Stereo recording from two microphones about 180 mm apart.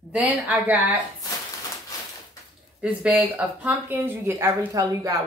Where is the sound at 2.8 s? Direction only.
5° right (ahead or behind).